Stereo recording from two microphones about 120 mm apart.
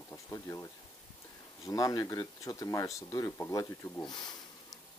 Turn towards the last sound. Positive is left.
turn(degrees=35)  # may be behind; listen again after turning